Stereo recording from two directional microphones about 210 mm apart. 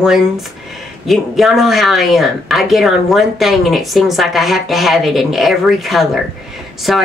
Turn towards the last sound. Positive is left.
turn(degrees=0)  # may be behind; listen again after turning